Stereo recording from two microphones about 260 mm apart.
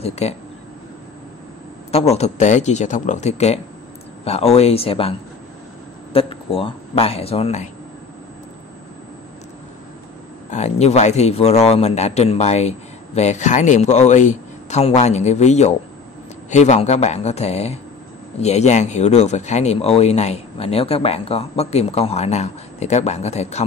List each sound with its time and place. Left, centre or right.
0.2 s a man's voice: left
1.9 s a man's voice: left
6.1 s speech: left
10.5 s a man's voice: left